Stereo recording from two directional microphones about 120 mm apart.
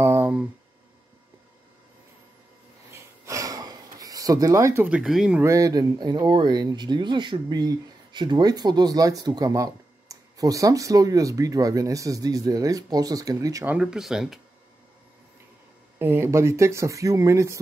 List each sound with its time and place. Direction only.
0.0 s a sound: 20° right (ahead or behind)
2.9 s a sound: 25° right (ahead or behind)
4.8 s speech: 10° right (ahead or behind)
5.4 s speech: 30° right (ahead or behind)
13.7 s speech: 5° right (ahead or behind)
16.0 s speech: 20° right (ahead or behind)